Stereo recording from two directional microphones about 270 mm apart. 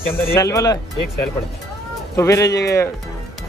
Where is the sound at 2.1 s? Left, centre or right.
Centre.